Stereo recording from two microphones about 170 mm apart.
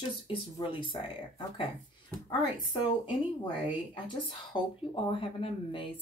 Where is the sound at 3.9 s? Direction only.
30° left (ahead or behind).